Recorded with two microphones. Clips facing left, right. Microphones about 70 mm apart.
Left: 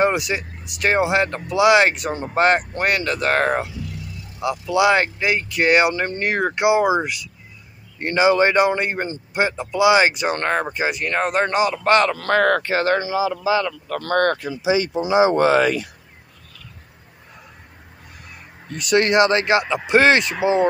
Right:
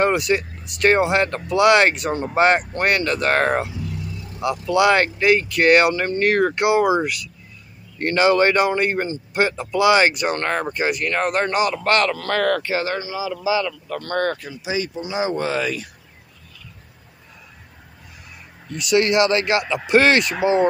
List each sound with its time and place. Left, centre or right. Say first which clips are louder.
0.0 s speech: right 1 dB; centre
5.9 s speech: right 3 dB; left
12.2 s speech: left 3 dB; left
13.8 s speech: left 4 dB; left
18.7 s speech: even; left